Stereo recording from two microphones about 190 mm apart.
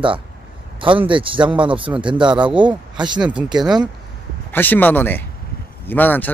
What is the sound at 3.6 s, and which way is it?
Speech, 5° right (ahead or behind).